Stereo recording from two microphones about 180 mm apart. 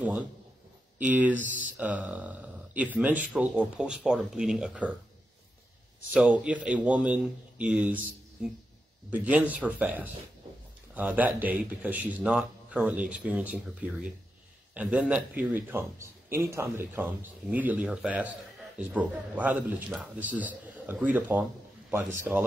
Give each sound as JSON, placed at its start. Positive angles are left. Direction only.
{"t": 0.9, "sound": "a man's voice", "side_deg": -10}
{"t": 6.1, "sound": "a man's voice", "side_deg": -5}